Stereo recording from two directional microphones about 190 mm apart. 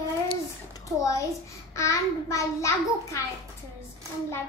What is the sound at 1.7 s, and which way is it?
A child's voice, 15° left (ahead or behind).